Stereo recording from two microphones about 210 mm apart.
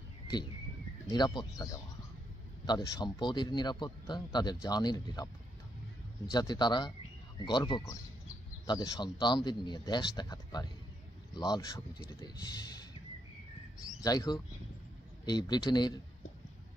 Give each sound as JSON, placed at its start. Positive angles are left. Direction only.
{"t": 1.0, "sound": "a man's voice", "side_deg": 20}
{"t": 6.3, "sound": "a man's voice", "side_deg": 20}
{"t": 14.0, "sound": "a man's voice", "side_deg": 20}